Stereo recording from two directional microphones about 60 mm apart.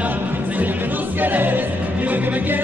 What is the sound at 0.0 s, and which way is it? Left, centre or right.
Music, right.